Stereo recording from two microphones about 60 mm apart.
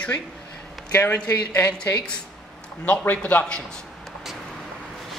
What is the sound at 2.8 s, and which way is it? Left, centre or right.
Speech, left.